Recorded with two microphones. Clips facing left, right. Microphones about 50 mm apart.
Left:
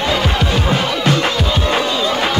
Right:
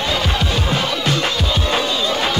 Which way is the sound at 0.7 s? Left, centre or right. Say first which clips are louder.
Left 3 dB; left.